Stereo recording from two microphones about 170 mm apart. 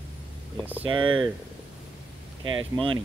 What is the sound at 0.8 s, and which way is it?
Speech, 30° right (ahead or behind).